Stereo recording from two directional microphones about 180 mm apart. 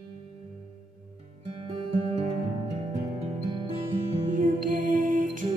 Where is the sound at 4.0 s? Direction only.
45° right (ahead or behind).